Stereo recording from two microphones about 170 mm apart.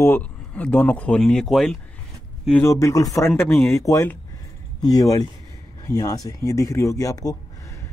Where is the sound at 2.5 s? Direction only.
15° left (ahead or behind).